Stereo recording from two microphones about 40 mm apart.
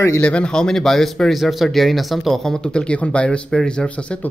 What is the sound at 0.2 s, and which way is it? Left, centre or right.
Speech, left.